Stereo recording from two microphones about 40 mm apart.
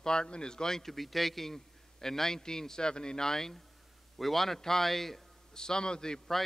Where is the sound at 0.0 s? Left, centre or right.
Centre.